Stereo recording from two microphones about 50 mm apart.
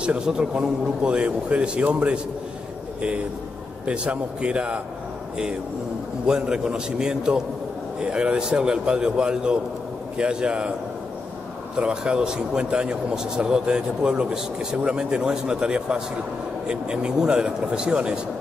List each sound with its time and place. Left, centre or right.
0.0 s a man's voice: centre
3.8 s a man's voice: right
6.2 s a man's voice: centre
11.8 s speech: centre